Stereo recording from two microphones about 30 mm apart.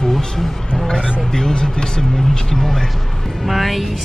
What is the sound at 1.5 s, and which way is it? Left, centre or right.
Speech, left.